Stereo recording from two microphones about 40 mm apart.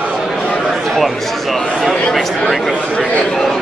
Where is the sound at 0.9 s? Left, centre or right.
Centre.